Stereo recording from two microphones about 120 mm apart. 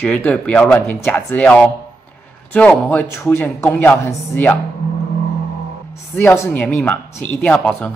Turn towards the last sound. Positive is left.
turn(degrees=10)  # may be behind; listen again after turning